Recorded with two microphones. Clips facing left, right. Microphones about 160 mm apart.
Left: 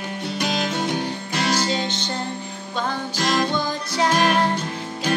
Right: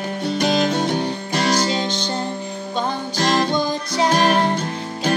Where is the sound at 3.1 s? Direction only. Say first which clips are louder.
Right 3 dB; 40° right (ahead or behind).